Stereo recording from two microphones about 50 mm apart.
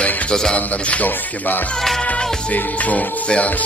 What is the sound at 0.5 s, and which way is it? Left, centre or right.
Speech, left.